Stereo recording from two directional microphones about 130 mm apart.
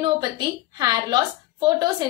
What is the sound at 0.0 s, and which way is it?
A woman's voice, 35° right (ahead or behind).